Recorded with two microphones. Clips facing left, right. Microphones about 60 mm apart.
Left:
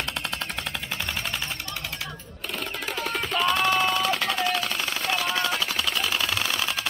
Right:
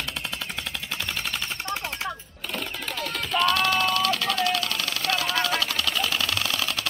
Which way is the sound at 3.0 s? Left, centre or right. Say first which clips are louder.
Right 1 dB; centre.